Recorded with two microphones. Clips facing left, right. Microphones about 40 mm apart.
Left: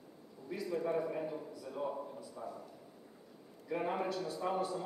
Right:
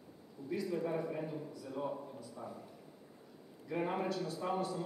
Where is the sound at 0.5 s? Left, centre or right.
Centre.